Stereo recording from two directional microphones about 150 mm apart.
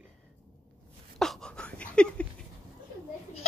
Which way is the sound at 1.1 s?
5° left (ahead or behind).